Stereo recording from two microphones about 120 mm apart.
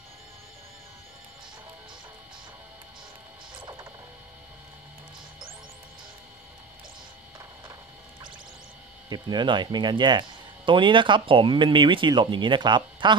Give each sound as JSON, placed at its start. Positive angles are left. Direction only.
{"t": 9.1, "sound": "speech", "side_deg": -40}